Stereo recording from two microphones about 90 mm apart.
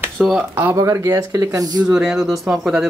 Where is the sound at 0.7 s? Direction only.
40° right (ahead or behind).